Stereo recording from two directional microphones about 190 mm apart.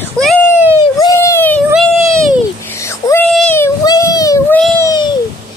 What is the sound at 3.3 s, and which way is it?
Speech, centre (ahead or behind).